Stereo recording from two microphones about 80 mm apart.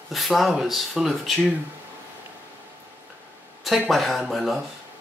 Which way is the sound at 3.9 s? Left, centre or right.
Centre.